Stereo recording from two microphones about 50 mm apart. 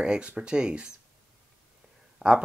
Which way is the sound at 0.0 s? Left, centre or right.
Centre.